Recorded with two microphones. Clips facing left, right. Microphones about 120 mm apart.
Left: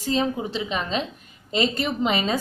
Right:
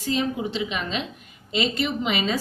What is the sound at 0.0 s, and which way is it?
A woman's voice, 35° left (ahead or behind).